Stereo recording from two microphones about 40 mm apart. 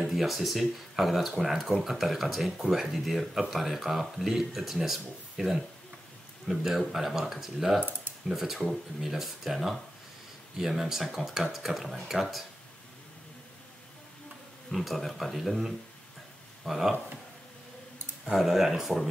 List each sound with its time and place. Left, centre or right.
0.0 s speech: centre
14.7 s speech: centre
18.2 s speech: centre